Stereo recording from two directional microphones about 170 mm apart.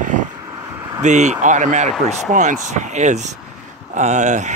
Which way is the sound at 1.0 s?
45° right (ahead or behind).